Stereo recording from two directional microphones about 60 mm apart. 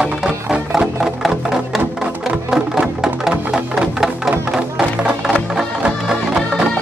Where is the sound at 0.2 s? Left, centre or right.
Centre.